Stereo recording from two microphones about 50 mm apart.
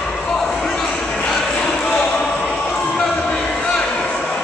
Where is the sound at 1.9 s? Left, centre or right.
Centre.